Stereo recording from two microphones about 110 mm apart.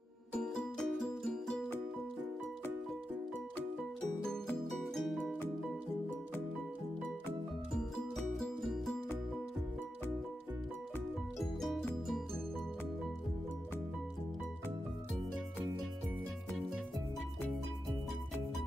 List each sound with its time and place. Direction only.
0.3 s music: 5° left (ahead or behind)
4.6 s music: centre (ahead or behind)